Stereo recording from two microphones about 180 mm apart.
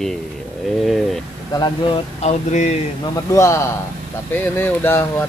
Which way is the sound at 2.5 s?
40° left (ahead or behind).